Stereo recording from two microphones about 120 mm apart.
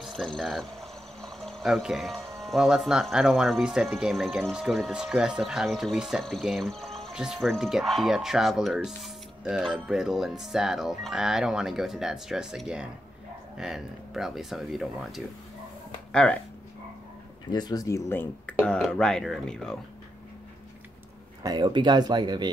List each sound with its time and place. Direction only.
0.0 s speech: centre (ahead or behind)
16.1 s speech: 10° left (ahead or behind)
17.5 s speech: 35° left (ahead or behind)
18.6 s speech: 5° left (ahead or behind)
21.4 s speech: 35° right (ahead or behind)